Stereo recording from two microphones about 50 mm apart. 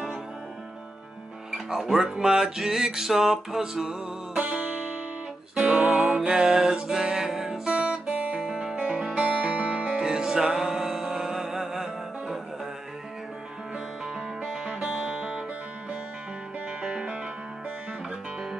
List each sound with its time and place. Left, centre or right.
1.5 s music: centre
4.4 s music: right
7.7 s music: right
9.2 s music: right
9.9 s music: centre
14.4 s music: centre
16.8 s music: centre